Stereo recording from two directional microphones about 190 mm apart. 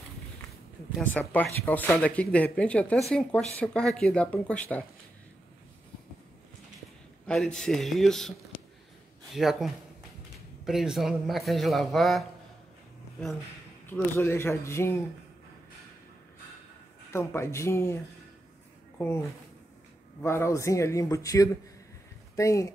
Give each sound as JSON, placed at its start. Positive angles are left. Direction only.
{"t": 1.0, "sound": "speech", "side_deg": 10}
{"t": 7.2, "sound": "speech", "side_deg": 5}
{"t": 9.3, "sound": "speech", "side_deg": 0}
{"t": 13.8, "sound": "speech", "side_deg": 10}
{"t": 17.1, "sound": "speech", "side_deg": 15}
{"t": 18.9, "sound": "speech", "side_deg": 10}